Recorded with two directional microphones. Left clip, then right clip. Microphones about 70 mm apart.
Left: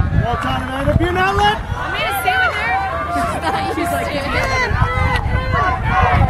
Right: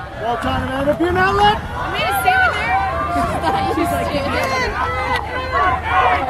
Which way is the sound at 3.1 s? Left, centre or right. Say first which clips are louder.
Even; left.